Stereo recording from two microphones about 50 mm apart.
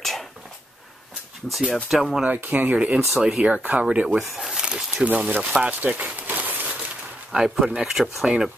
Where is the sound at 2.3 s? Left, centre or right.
Right; by 3.6 s centre.